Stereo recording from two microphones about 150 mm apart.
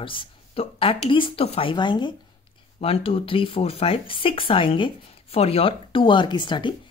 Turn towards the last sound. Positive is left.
turn(degrees=30)  # may be behind; listen again after turning